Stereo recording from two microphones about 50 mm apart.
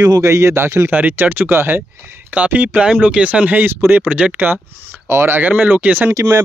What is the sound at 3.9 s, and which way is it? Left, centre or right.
Speech, right.